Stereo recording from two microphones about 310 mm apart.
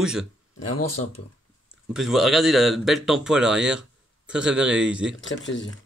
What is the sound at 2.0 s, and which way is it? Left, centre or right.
Speech, centre.